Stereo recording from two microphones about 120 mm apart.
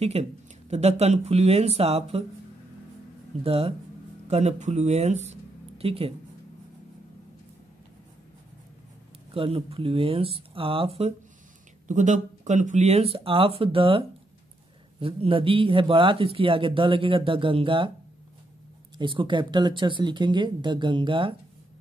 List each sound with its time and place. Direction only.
0.0 s speech: 65° right (ahead or behind)
3.4 s speech: 55° right (ahead or behind)
4.3 s speech: 65° right (ahead or behind)
9.3 s speech: 55° right (ahead or behind)
11.9 s speech: 90° right; by 17.9 s 45° right (ahead or behind)
18.9 s speech: 45° right (ahead or behind)